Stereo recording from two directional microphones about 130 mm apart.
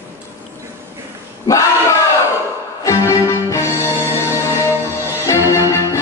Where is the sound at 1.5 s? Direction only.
25° left (ahead or behind).